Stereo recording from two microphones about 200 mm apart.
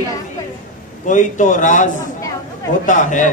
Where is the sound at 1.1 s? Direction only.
40° left (ahead or behind).